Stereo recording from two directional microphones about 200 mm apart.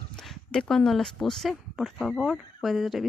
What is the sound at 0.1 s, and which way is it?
Speech, centre (ahead or behind).